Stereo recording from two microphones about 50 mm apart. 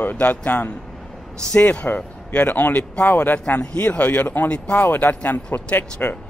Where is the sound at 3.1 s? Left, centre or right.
Left.